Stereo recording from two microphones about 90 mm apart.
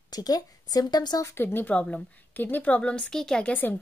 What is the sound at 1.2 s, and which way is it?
A woman's voice, 25° left (ahead or behind).